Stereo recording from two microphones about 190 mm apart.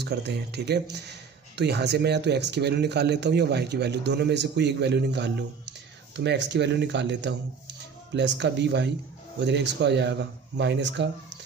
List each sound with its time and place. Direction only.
0.0 s speech: 60° right (ahead or behind)